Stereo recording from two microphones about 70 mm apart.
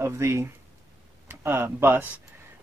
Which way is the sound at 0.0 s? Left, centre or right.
Right.